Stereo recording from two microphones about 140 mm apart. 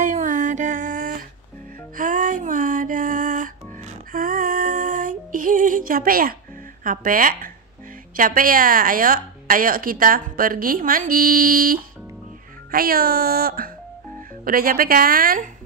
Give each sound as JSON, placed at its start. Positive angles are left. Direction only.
{"t": 0.0, "sound": "music", "side_deg": -60}
{"t": 4.1, "sound": "female singing", "side_deg": -85}
{"t": 6.8, "sound": "a woman's voice", "side_deg": -85}